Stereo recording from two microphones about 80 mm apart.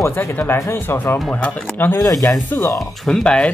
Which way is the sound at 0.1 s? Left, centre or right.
Left.